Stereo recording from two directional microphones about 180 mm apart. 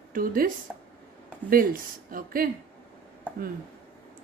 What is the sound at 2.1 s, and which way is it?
Speech, 55° right (ahead or behind).